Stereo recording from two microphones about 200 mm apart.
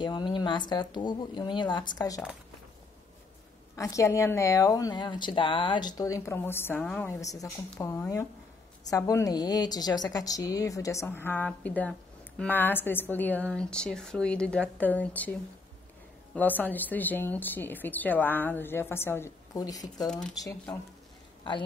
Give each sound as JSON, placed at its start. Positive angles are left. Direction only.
{"t": 0.0, "sound": "speech", "side_deg": 25}
{"t": 3.7, "sound": "a woman's voice", "side_deg": 15}
{"t": 16.3, "sound": "a woman's voice", "side_deg": 10}
{"t": 20.1, "sound": "speech", "side_deg": 5}
{"t": 20.4, "sound": "a woman's voice", "side_deg": 15}